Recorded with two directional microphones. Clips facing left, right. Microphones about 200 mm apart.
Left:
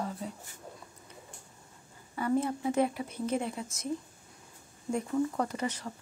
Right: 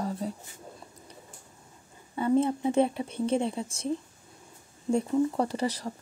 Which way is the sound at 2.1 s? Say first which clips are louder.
Right 5 dB; 25° right (ahead or behind).